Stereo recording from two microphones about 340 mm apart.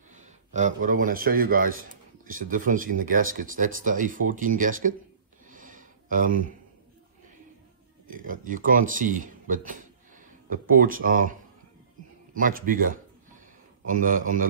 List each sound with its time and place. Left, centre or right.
0.1 s speech: right
5.5 s a sound: right
8.1 s speech: right
12.4 s speech: right